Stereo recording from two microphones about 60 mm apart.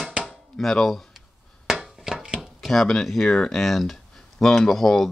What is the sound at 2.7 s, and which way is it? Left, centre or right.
Speech, centre.